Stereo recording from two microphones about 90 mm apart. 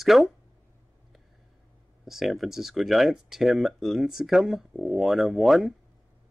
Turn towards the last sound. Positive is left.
turn(degrees=0)  # may be behind; listen again after turning